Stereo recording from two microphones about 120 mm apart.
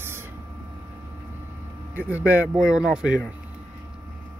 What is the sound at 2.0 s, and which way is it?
Speech, 15° right (ahead or behind).